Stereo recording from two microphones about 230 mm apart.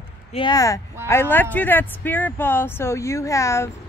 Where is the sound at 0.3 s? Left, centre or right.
Centre.